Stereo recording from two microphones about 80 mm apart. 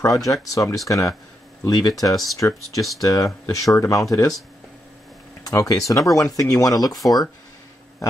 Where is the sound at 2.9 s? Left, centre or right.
Left.